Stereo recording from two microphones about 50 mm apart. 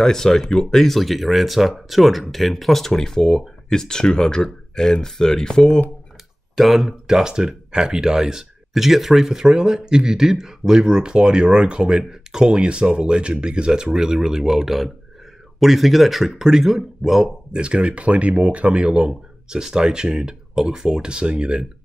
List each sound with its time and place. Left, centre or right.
0.0 s speech: centre
6.5 s speech: centre
17.5 s speech: right